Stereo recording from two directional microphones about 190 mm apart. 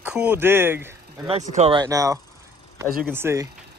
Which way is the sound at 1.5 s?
35° right (ahead or behind).